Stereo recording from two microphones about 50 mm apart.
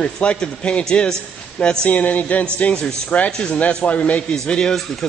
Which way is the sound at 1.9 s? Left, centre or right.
Left.